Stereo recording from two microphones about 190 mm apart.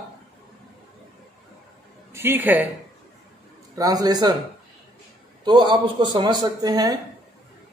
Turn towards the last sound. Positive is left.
turn(degrees=-20)  # may be behind; listen again after turning